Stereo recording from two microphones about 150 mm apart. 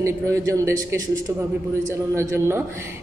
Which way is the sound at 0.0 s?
20° right (ahead or behind).